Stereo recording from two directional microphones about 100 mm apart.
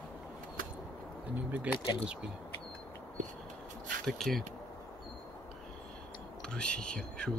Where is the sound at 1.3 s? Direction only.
15° right (ahead or behind).